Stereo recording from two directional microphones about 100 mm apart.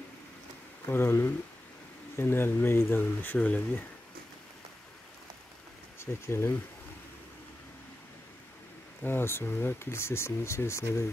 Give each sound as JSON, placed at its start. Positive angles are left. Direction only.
{"t": 0.8, "sound": "speech", "side_deg": 20}
{"t": 5.9, "sound": "speech", "side_deg": 25}
{"t": 9.0, "sound": "speech", "side_deg": 25}